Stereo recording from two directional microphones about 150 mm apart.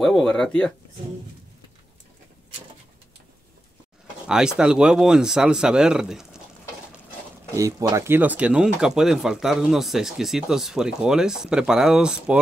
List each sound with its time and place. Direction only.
0.0 s speech: 5° left (ahead or behind)
4.3 s speech: 5° right (ahead or behind)
7.5 s speech: 20° right (ahead or behind); by 12.4 s 5° right (ahead or behind)